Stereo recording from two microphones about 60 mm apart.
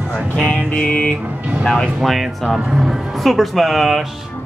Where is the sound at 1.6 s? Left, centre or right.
Centre.